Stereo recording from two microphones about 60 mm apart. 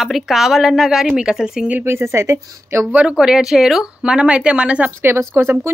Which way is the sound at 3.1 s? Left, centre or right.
Centre.